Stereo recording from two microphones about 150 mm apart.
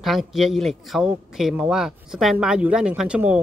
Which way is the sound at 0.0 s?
Centre (ahead or behind).